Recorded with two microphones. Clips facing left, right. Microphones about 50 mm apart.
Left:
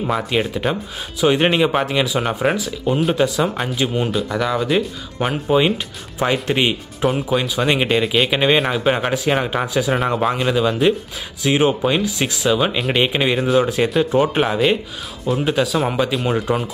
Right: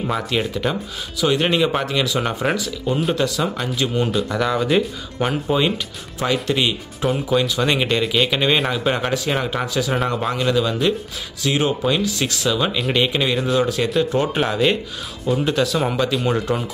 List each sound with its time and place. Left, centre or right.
0.0 s speech: centre
4.1 s speech: centre
5.6 s speech: centre
7.1 s speech: centre